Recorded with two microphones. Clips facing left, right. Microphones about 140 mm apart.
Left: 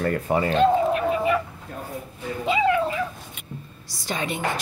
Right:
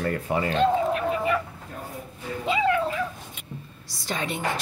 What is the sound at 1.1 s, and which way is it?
Bird, 10° left (ahead or behind).